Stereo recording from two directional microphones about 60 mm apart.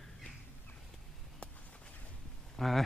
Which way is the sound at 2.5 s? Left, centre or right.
Centre.